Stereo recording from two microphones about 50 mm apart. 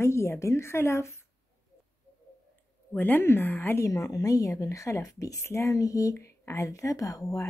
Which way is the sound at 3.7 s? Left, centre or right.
Left.